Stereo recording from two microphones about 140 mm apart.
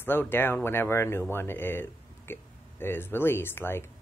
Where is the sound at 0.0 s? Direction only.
15° left (ahead or behind).